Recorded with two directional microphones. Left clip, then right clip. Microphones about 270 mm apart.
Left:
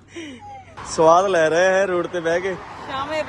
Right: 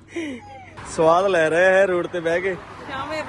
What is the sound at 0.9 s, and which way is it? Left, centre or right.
Speech, centre.